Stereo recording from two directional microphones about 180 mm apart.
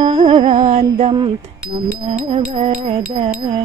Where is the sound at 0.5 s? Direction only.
40° right (ahead or behind).